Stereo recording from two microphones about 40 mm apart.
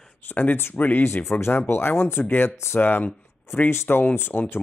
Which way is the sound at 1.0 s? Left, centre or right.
Left.